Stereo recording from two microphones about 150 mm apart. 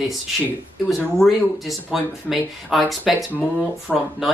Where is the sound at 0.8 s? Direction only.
Centre (ahead or behind).